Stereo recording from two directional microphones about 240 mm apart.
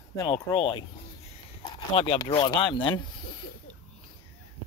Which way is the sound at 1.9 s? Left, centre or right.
Left.